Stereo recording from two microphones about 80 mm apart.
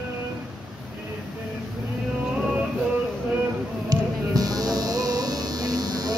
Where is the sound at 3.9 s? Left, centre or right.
Right.